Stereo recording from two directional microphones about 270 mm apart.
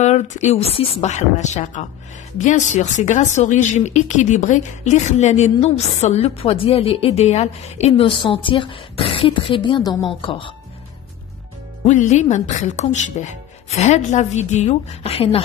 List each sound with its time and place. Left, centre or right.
0.0 s a woman's voice: left
11.8 s speech: left